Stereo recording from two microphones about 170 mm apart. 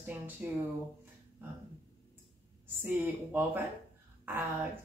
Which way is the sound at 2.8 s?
10° right (ahead or behind).